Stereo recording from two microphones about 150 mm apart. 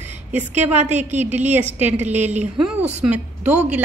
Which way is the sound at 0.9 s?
50° right (ahead or behind).